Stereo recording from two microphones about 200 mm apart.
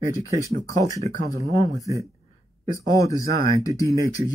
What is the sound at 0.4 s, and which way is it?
Speech, 15° left (ahead or behind).